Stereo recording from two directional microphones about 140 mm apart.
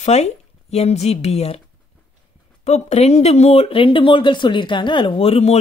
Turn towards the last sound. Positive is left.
turn(degrees=45)  # may be behind; listen again after turning